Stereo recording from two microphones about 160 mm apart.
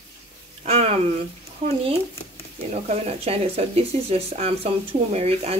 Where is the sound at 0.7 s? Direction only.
40° right (ahead or behind).